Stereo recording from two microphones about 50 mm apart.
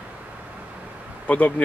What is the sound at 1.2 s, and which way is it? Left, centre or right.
Speech, left.